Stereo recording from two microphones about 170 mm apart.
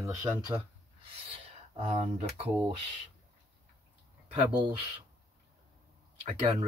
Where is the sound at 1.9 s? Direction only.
40° right (ahead or behind).